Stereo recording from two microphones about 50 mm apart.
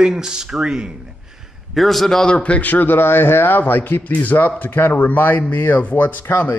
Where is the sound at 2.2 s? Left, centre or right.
Left.